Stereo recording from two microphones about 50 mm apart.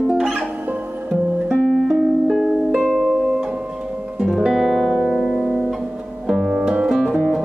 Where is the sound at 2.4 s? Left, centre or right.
Centre.